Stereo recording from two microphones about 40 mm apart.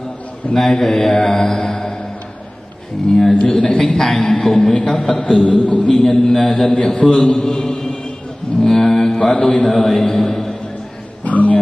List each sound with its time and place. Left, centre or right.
0.6 s mantra: centre
3.1 s mantra: centre
3.3 s a sound: left
3.8 s mantra: centre
5.4 s a sound: left; by 6.7 s centre
6.9 s mantra: centre
7.6 s chant: centre
8.8 s mantra: centre
9.4 s a sound: left
9.7 s mantra: centre
11.2 s a man's voice: left